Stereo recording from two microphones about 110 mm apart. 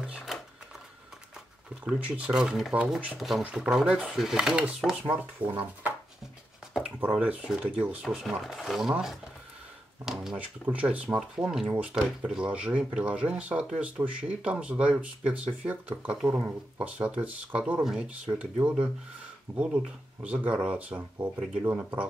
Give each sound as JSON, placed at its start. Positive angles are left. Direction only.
{"t": 0.0, "sound": "shuffling cards", "side_deg": -5}
{"t": 1.9, "sound": "speech", "side_deg": -10}
{"t": 7.0, "sound": "speech", "side_deg": -15}
{"t": 10.0, "sound": "a sound", "side_deg": -5}
{"t": 10.3, "sound": "speech", "side_deg": -15}